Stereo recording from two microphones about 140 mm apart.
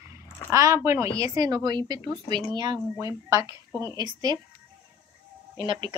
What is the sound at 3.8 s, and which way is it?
Speech, 30° right (ahead or behind).